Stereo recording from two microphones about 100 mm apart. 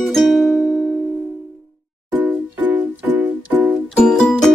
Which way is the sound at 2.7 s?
10° right (ahead or behind).